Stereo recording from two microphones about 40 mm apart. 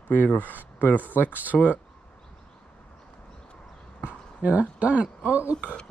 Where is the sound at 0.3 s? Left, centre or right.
Left.